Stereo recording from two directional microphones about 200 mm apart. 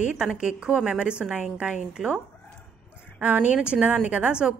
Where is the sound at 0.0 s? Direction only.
5° right (ahead or behind).